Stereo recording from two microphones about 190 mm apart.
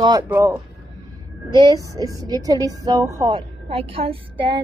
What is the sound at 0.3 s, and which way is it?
A woman's voice, 15° right (ahead or behind).